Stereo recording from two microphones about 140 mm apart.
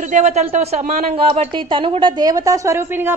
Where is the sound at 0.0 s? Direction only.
55° right (ahead or behind).